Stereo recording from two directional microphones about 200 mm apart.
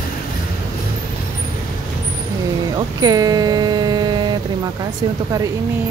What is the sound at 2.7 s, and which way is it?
Vehicle, 20° right (ahead or behind).